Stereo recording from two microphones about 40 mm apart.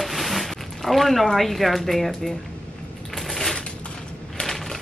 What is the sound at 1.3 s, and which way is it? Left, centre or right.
Speech, centre.